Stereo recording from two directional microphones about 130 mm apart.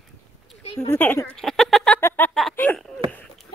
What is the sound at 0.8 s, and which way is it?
Speech, 15° left (ahead or behind).